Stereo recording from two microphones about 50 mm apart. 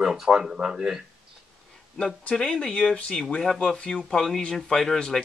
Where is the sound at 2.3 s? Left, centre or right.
Centre.